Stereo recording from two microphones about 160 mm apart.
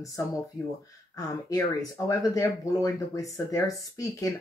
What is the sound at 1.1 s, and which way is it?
Speech, 20° left (ahead or behind).